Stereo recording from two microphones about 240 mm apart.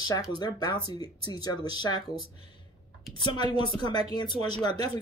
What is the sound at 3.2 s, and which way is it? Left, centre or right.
Speech, centre.